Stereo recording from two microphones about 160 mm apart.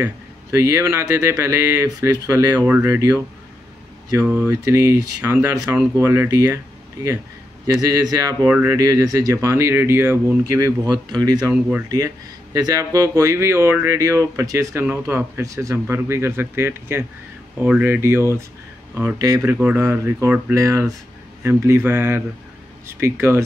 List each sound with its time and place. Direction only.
0.0 s speech: 20° right (ahead or behind)
4.5 s speech: 20° right (ahead or behind)
12.5 s speech: 20° right (ahead or behind)